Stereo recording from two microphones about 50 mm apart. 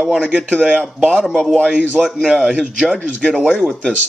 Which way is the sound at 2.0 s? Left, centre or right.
Centre.